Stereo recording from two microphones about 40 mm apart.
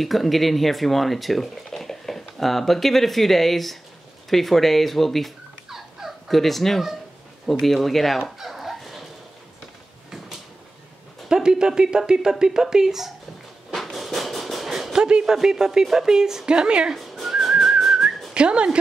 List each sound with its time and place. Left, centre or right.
0.0 s speech: centre
5.7 s turkey: centre
7.4 s speech: centre
8.2 s fowl: centre
11.2 s speech: centre
13.7 s a sound: centre
14.9 s a sound: centre
15.3 s speech: centre
16.9 s whistling: centre
18.3 s speech: right